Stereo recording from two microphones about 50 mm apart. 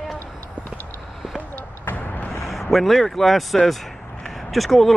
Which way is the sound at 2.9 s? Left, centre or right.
Centre.